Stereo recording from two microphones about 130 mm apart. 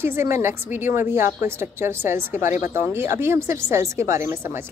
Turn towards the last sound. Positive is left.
turn(degrees=-20)  # may be behind; listen again after turning